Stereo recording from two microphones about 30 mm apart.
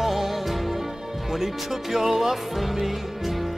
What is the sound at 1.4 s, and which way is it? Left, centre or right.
Music, centre.